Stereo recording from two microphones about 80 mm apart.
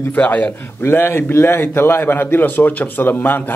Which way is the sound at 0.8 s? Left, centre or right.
Left.